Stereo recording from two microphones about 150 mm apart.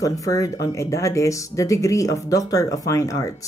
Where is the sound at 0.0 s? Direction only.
20° left (ahead or behind).